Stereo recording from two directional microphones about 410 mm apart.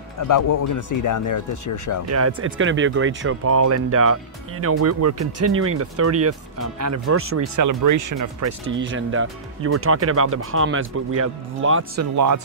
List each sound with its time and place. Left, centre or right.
0.3 s speech: left
2.0 s speech: right
7.5 s speech: right
8.5 s speech: right